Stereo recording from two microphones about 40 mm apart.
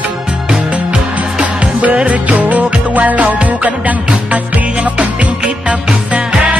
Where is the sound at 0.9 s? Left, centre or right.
Right.